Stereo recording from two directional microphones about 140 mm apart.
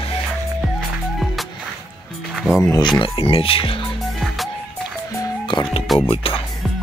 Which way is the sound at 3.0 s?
40° left (ahead or behind).